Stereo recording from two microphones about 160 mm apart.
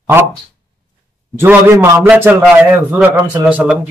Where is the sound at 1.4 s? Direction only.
15° right (ahead or behind).